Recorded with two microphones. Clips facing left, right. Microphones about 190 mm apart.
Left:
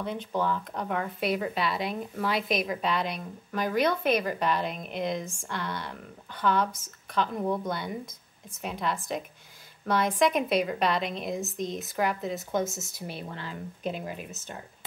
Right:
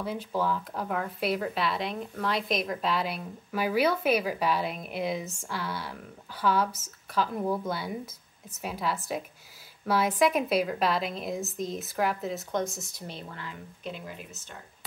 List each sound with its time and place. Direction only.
0.0 s speech: 5° right (ahead or behind)
13.3 s speech: 30° left (ahead or behind)
13.8 s speech: 45° left (ahead or behind)